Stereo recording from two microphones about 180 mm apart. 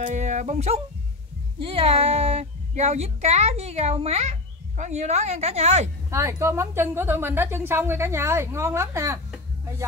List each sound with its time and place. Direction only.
0.0 s speech: 40° right (ahead or behind)
6.0 s a woman's voice: 15° right (ahead or behind)